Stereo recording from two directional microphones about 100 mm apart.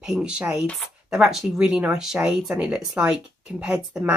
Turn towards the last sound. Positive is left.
turn(degrees=-10)  # may be behind; listen again after turning